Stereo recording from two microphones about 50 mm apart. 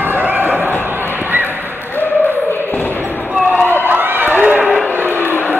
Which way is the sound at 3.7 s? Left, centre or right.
Right.